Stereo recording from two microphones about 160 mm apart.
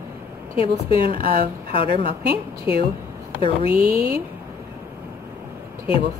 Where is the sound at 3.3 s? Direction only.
35° left (ahead or behind).